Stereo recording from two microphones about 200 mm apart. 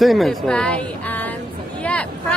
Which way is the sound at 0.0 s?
Centre (ahead or behind).